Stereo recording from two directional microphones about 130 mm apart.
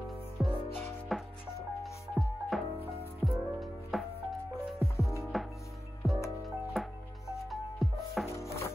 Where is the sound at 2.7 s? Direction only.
50° left (ahead or behind).